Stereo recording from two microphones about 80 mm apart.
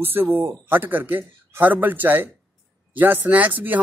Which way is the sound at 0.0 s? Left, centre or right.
Right.